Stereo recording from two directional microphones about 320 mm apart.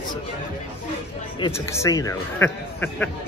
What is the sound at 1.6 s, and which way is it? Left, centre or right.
Speech, centre.